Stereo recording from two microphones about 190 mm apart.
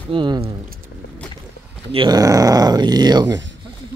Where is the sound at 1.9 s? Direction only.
20° right (ahead or behind).